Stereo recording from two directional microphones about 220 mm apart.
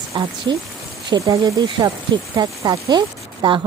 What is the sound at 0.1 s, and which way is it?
Speech, 15° right (ahead or behind).